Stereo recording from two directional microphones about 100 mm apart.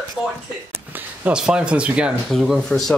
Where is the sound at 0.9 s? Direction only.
20° right (ahead or behind).